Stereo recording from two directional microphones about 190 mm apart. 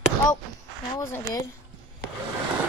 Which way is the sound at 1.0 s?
15° left (ahead or behind).